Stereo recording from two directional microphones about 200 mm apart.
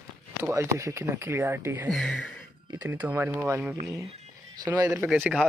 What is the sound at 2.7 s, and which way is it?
Speech, 15° right (ahead or behind).